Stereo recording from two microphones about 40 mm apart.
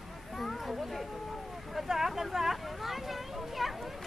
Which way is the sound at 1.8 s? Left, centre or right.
Centre.